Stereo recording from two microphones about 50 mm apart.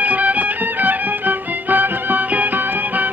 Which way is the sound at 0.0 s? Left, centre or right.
Right.